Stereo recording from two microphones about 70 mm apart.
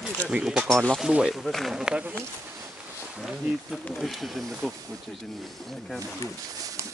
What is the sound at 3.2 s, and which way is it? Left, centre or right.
Speech, centre.